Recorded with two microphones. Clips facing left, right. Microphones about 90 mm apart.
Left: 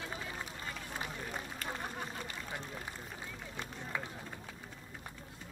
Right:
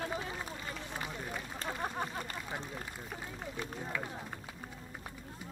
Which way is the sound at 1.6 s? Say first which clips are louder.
Right 7 dB; 35° right (ahead or behind).